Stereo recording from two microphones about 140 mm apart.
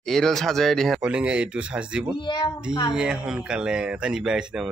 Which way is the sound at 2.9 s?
5° right (ahead or behind).